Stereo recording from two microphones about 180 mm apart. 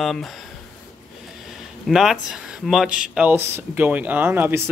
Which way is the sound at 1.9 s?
Centre (ahead or behind).